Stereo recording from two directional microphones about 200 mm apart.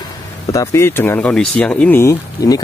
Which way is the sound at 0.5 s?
15° left (ahead or behind).